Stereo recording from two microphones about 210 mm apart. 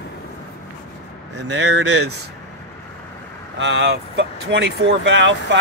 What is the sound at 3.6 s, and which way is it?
Speech, 55° right (ahead or behind).